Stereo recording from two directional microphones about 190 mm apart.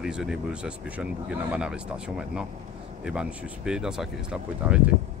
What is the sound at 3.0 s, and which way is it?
Speech, 5° right (ahead or behind).